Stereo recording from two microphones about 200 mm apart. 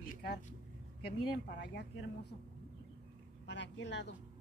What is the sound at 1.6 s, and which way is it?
Speech, 60° left (ahead or behind).